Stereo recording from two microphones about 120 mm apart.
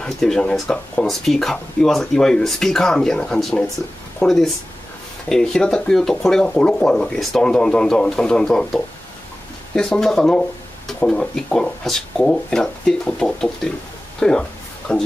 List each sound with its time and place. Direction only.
0.0 s speech: 5° left (ahead or behind)